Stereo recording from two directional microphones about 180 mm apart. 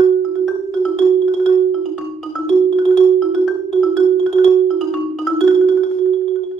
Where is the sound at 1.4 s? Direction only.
Centre (ahead or behind).